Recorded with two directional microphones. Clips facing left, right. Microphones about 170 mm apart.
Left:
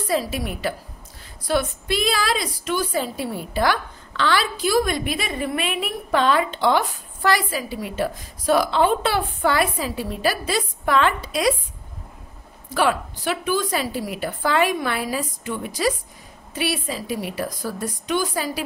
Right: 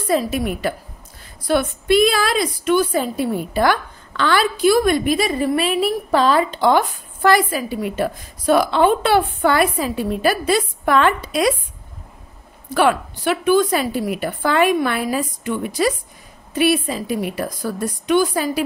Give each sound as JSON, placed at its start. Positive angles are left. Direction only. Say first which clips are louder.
{"t": 0.1, "sound": "a woman's voice", "louder": "right 5 dB", "side_deg": -50}
{"t": 7.2, "sound": "a woman's voice", "louder": "right 5 dB", "side_deg": -55}
{"t": 12.7, "sound": "a woman's voice", "louder": "right 4 dB", "side_deg": -60}